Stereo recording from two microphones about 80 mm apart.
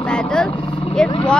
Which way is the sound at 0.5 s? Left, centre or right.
Left.